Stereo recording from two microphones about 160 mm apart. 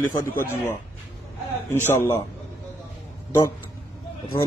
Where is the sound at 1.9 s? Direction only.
15° left (ahead or behind).